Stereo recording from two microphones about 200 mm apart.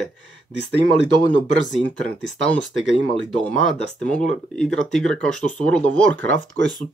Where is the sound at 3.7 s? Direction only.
5° left (ahead or behind).